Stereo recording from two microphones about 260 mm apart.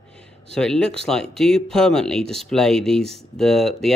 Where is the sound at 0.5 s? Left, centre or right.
Centre.